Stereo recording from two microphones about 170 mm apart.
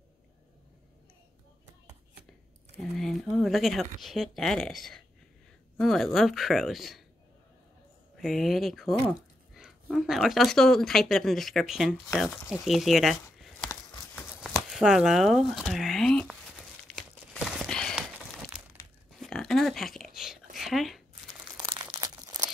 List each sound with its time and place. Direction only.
2.8 s speech: centre (ahead or behind)
8.2 s speech: centre (ahead or behind)
14.7 s speech: 5° right (ahead or behind)
16.9 s a sound: centre (ahead or behind)
17.9 s a sound: 5° right (ahead or behind)
21.7 s crumpling: 25° right (ahead or behind)